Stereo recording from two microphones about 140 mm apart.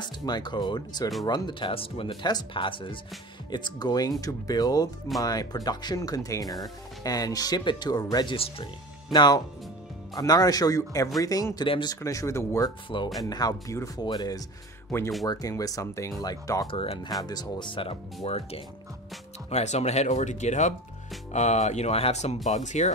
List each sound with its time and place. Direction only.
0.0 s speech: 30° left (ahead or behind)
16.7 s speech: 40° left (ahead or behind)
17.1 s speech: 25° left (ahead or behind); by 22.9 s 60° left (ahead or behind)